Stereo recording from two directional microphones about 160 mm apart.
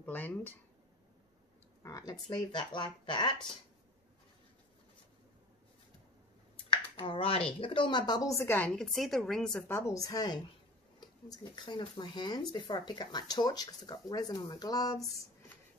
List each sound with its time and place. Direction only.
0.0 s speech: 10° left (ahead or behind)
1.8 s speech: 20° left (ahead or behind)
6.7 s finger snapping: 35° left (ahead or behind)
7.6 s speech: 30° left (ahead or behind)